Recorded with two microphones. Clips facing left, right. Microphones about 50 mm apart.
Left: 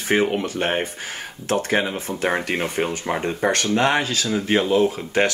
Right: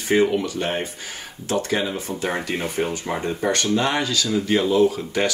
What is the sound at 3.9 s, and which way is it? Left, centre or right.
Speech, left.